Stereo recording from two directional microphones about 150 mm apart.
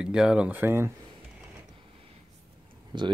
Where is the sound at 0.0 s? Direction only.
5° right (ahead or behind).